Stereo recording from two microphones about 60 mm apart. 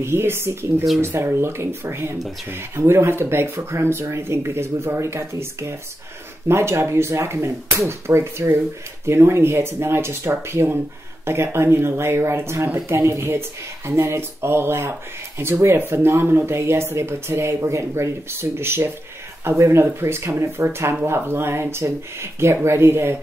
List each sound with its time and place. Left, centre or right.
0.0 s speech: right
20.6 s speech: right